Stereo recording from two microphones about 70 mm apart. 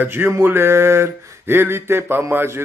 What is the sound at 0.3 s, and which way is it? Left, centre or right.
Mantra, right.